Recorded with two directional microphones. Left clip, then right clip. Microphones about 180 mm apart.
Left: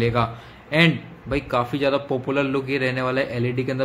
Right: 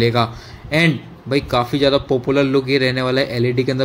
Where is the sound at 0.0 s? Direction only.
20° right (ahead or behind).